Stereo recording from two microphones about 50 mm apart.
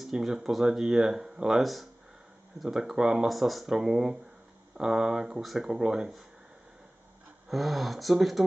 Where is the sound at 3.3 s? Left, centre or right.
Centre.